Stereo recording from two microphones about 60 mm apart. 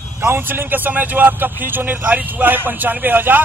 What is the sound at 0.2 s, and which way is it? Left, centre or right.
A man's voice, right.